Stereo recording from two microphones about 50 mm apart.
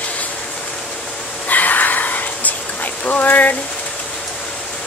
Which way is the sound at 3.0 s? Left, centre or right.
Left.